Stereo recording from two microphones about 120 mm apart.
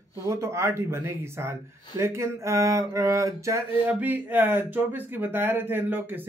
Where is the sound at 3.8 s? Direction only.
15° right (ahead or behind).